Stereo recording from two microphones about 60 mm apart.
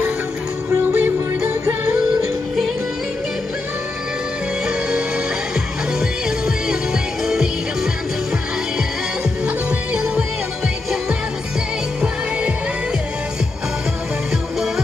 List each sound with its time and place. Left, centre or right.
0.9 s music: right
5.9 s music: centre